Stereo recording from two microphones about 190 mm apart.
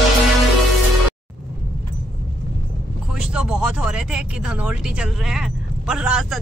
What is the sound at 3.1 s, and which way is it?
Speech, 5° right (ahead or behind).